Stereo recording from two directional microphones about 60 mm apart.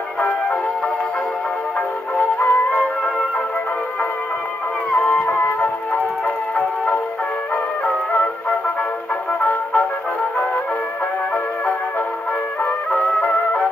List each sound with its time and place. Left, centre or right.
2.4 s music: left
4.9 s music: left
8.1 s music: left
9.4 s brass instrument: left
13.2 s music: left